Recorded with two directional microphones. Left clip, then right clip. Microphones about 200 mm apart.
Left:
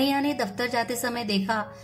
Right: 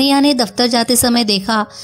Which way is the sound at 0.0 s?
40° right (ahead or behind).